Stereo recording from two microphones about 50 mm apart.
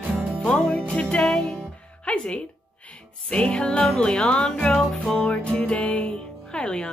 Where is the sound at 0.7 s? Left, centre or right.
Left.